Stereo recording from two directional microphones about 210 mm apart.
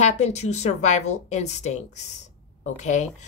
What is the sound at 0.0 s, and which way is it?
A woman's voice, 30° left (ahead or behind).